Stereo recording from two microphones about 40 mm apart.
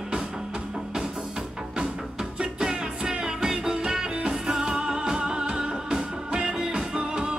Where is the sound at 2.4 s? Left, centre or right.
Right.